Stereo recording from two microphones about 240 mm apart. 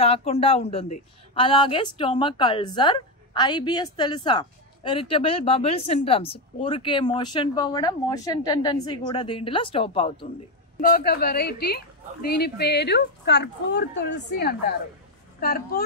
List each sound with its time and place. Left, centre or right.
0.0 s a woman's voice: left
10.8 s a woman's voice: left